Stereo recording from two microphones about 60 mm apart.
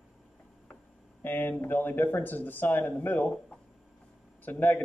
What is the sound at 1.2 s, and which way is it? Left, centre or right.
Speech, left.